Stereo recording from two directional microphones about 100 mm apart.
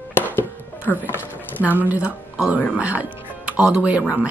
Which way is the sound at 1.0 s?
20° left (ahead or behind).